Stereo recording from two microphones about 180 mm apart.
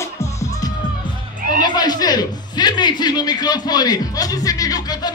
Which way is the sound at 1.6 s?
20° left (ahead or behind).